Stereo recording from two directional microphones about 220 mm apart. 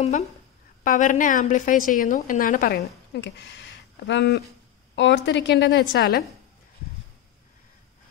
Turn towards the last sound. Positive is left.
turn(degrees=45)  # may be behind; listen again after turning